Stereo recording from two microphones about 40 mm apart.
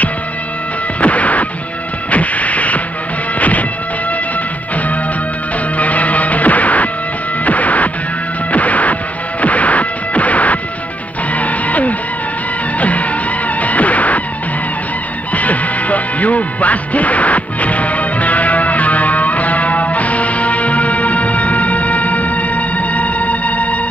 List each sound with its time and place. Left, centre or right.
1.0 s music: left
5.8 s music: left
9.4 s smash: left
11.3 s music: left
13.6 s music: left
15.3 s music: left